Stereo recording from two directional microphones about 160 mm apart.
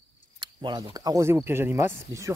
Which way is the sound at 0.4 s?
30° right (ahead or behind).